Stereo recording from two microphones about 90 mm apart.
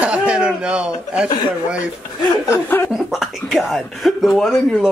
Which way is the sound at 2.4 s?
30° left (ahead or behind).